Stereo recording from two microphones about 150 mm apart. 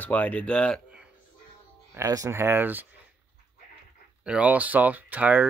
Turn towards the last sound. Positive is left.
turn(degrees=-10)  # may be behind; listen again after turning